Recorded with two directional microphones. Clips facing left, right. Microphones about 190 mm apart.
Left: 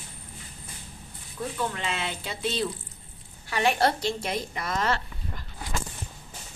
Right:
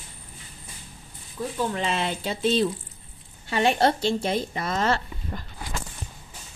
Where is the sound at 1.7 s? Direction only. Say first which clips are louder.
Right 5 dB; 35° right (ahead or behind).